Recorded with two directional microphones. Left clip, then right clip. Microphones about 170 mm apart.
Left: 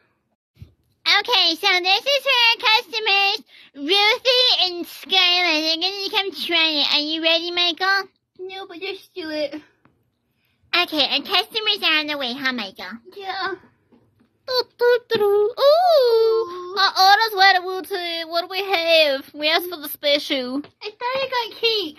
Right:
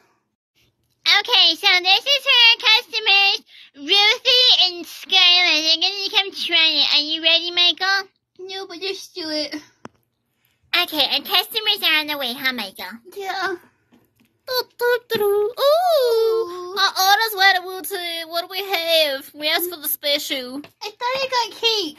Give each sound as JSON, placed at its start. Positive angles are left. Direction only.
{"t": 1.0, "sound": "a child's voice", "side_deg": 30}
{"t": 8.5, "sound": "speech", "side_deg": -75}
{"t": 10.7, "sound": "child singing", "side_deg": 25}
{"t": 13.1, "sound": "a child's voice", "side_deg": -55}
{"t": 14.4, "sound": "child singing", "side_deg": 15}
{"t": 20.8, "sound": "a child's voice", "side_deg": -90}